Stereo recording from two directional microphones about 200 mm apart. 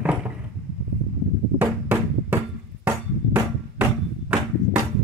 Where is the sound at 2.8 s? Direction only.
10° right (ahead or behind).